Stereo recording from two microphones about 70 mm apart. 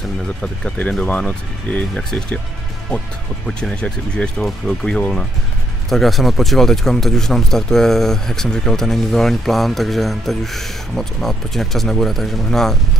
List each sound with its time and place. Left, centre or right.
0.4 s speech: left
3.4 s speech: centre
5.9 s speech: centre